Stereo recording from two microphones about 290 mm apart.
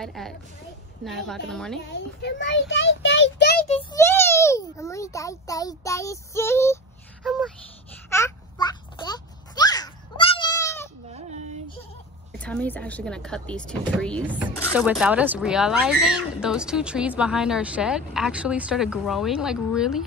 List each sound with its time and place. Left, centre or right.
0.0 s speech: centre
1.9 s a child's voice: left
3.9 s a child's voice: centre
8.1 s a sound: centre
11.1 s baby cry: right
12.3 s speech: centre